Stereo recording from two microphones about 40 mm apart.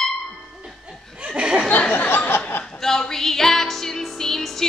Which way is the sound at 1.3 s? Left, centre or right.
Right.